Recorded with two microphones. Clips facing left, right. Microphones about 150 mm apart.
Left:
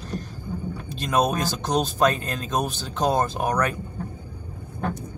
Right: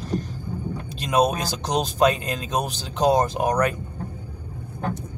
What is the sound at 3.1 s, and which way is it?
Speech, 15° right (ahead or behind).